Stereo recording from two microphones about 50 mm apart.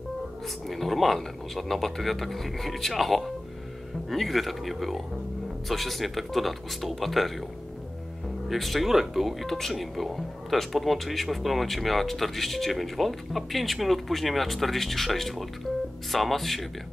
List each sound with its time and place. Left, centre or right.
0.7 s speech: centre
8.5 s speech: centre